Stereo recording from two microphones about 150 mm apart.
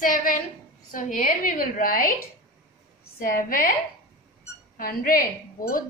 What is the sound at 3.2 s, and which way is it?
Speech, 65° left (ahead or behind).